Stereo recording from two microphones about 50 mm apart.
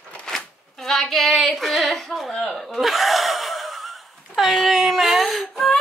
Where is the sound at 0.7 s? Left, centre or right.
Centre.